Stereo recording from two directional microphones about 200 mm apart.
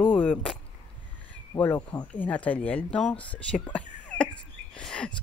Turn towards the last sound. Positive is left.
turn(degrees=5)  # may be behind; listen again after turning